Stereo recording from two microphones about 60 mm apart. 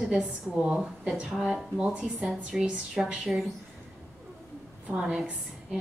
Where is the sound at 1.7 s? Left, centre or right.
Centre.